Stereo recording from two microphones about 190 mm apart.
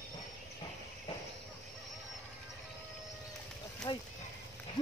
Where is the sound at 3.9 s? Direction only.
25° left (ahead or behind).